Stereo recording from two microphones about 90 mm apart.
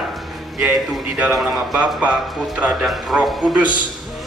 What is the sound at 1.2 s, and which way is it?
A man's voice, 5° right (ahead or behind).